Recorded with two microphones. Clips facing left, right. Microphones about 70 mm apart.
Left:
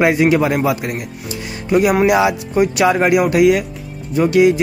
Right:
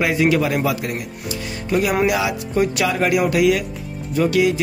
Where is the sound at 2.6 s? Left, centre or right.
Centre.